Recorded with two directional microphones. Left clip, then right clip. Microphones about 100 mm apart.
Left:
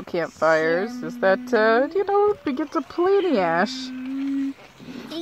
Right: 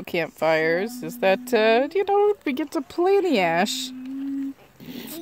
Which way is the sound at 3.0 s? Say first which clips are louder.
Even; 90° right.